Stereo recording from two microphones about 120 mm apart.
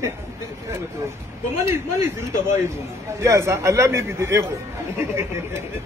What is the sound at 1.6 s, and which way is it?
A man's voice, 25° right (ahead or behind).